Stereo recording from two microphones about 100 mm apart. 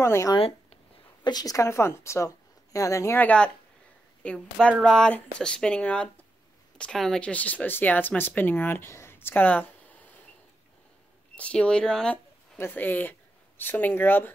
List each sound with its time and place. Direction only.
0.0 s speech: 25° left (ahead or behind)
1.2 s a woman's voice: 40° left (ahead or behind)
3.2 s speech: 10° left (ahead or behind)
11.3 s speech: 10° left (ahead or behind)
12.5 s speech: 20° left (ahead or behind)